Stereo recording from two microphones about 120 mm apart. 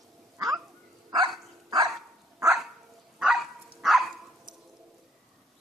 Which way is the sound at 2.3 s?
25° right (ahead or behind).